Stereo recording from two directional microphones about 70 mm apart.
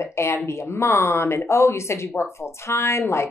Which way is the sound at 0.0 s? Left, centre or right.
Left.